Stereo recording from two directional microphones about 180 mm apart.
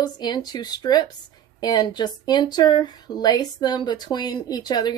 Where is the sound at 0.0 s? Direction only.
25° left (ahead or behind).